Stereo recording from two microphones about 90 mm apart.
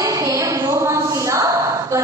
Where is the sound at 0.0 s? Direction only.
40° right (ahead or behind).